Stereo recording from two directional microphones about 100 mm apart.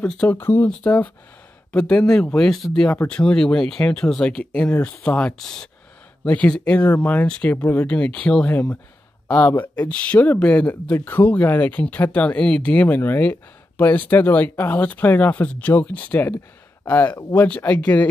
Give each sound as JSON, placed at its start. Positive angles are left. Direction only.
{"t": 0.0, "sound": "speech", "side_deg": 10}
{"t": 0.4, "sound": "speech", "side_deg": 20}